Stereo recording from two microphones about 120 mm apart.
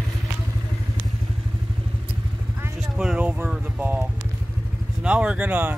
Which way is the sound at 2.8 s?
5° right (ahead or behind).